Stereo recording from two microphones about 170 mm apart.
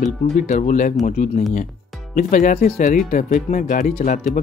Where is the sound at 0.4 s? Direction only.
50° left (ahead or behind).